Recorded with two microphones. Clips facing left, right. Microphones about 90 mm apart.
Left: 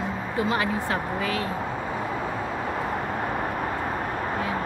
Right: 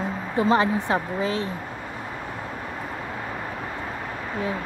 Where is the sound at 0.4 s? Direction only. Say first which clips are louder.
Right 5 dB; 25° right (ahead or behind).